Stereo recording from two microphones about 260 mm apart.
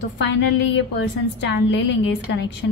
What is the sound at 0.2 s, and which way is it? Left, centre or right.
A woman's voice, left.